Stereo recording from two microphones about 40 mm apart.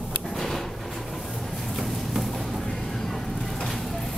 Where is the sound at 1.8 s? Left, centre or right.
Centre.